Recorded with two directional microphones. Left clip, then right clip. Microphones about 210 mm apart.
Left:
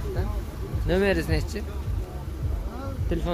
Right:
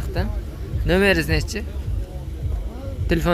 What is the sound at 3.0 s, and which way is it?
Speech, 25° right (ahead or behind).